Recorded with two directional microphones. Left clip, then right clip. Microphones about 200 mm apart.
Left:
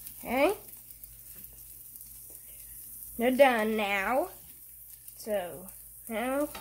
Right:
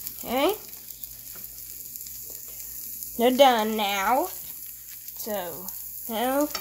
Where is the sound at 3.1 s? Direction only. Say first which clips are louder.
Right 5 dB; 15° right (ahead or behind).